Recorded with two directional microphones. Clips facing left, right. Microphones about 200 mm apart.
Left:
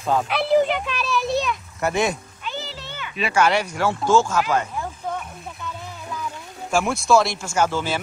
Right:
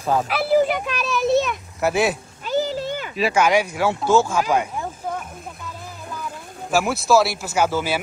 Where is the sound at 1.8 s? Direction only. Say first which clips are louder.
Right 3 dB; 5° right (ahead or behind).